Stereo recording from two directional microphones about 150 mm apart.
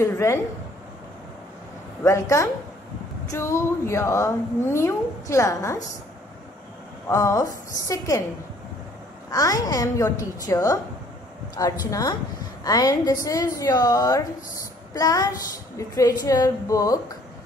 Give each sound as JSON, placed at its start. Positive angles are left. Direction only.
{"t": 0.0, "sound": "speech", "side_deg": 20}
{"t": 2.0, "sound": "a woman's voice", "side_deg": 20}
{"t": 7.1, "sound": "a woman's voice", "side_deg": 20}
{"t": 9.3, "sound": "a woman's voice", "side_deg": 25}